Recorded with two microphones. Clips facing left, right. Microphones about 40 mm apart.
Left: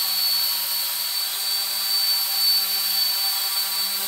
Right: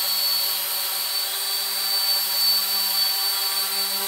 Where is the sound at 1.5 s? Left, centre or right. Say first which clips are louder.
Left 1 dB; centre.